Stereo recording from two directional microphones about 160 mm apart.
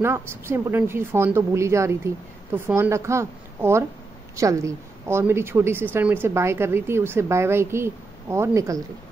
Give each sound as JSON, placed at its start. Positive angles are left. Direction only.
{"t": 0.0, "sound": "a woman's voice", "side_deg": -15}